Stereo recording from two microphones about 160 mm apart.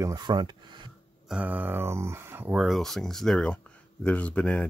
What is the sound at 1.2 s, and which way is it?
Speech, 5° right (ahead or behind).